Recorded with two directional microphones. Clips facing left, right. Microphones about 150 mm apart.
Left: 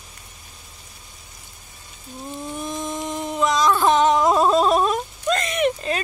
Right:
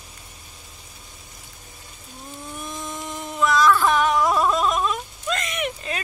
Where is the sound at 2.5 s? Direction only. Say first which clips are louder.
Left 5 dB; 25° left (ahead or behind).